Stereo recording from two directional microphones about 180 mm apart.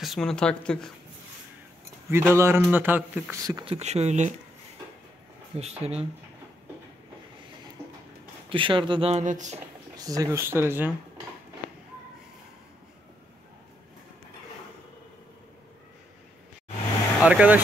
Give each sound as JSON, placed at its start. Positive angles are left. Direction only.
{"t": 0.0, "sound": "speech", "side_deg": 0}
{"t": 2.0, "sound": "a man's voice", "side_deg": -15}
{"t": 3.7, "sound": "speech", "side_deg": -35}
{"t": 5.6, "sound": "speech", "side_deg": -35}
{"t": 8.5, "sound": "speech", "side_deg": -30}
{"t": 9.6, "sound": "speech", "side_deg": -20}
{"t": 17.2, "sound": "speech", "side_deg": -5}